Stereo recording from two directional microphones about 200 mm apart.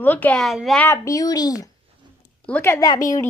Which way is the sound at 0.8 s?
15° left (ahead or behind).